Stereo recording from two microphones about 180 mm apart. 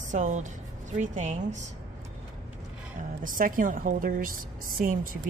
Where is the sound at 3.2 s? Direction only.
50° right (ahead or behind).